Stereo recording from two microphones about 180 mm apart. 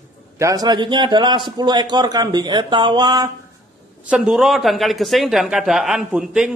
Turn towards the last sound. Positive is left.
turn(degrees=-5)  # may be behind; listen again after turning